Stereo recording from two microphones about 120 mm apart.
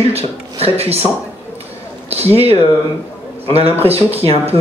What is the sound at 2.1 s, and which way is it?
A man's voice, 55° right (ahead or behind).